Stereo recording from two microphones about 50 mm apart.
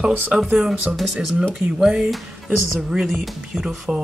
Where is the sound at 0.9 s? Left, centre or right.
Centre.